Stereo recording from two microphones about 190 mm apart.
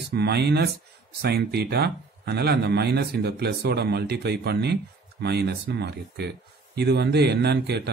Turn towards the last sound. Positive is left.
turn(degrees=-60)  # may be behind; listen again after turning